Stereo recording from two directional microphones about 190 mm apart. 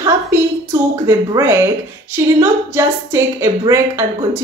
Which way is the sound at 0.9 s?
15° right (ahead or behind).